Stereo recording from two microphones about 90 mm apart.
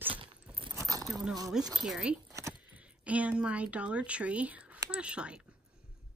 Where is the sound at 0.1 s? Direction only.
70° right (ahead or behind).